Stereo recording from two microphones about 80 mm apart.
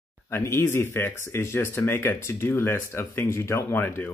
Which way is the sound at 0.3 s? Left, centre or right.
Left.